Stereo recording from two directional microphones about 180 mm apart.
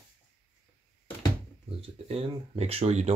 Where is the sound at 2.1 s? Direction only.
35° right (ahead or behind).